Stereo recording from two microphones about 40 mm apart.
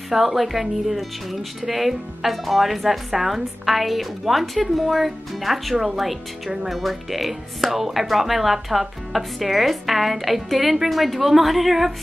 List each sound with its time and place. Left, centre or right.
0.1 s speech: centre